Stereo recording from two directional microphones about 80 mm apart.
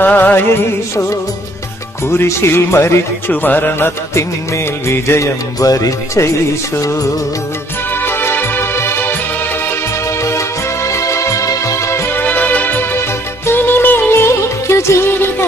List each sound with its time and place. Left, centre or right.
0.0 s music: left
2.0 s music: left
3.3 s music: left
4.8 s music: left
7.9 s music: left
10.2 s music: left